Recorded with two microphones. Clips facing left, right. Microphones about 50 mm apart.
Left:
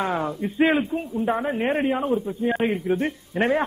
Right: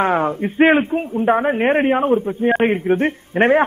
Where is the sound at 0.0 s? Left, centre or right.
Right.